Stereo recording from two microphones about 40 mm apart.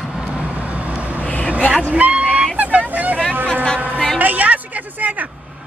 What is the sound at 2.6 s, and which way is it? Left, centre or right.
Vehicle, right.